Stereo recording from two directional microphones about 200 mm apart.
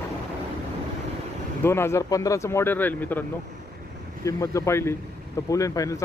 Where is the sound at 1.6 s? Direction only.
10° left (ahead or behind).